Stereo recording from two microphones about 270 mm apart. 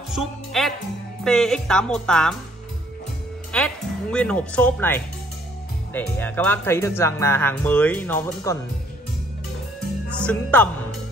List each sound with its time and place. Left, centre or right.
0.1 s speech: centre
3.5 s speech: centre
10.1 s speech: centre